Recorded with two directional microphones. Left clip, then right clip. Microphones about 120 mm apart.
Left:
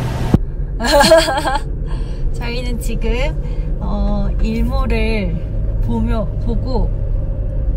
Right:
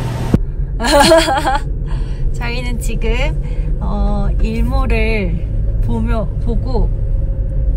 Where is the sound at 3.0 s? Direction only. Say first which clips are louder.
Right 1 dB; 20° left (ahead or behind).